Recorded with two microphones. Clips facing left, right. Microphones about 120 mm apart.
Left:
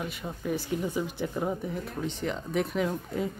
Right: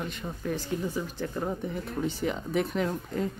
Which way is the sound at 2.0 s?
5° right (ahead or behind).